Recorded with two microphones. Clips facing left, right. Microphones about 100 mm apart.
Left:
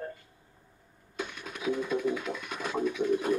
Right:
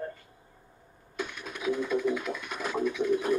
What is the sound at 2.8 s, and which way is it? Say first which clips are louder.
Bird: right 1 dB; 20° left (ahead or behind).